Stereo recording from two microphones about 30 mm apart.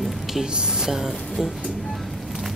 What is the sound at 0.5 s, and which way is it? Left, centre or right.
Speech, right.